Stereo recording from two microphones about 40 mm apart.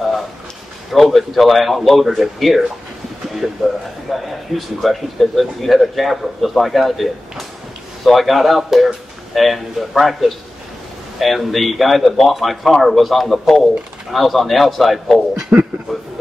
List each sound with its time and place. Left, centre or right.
0.9 s speech: centre
4.1 s speech: centre
15.5 s speech: right
15.9 s speech: centre